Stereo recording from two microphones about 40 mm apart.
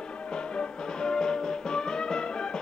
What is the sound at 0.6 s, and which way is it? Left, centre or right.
Music, left.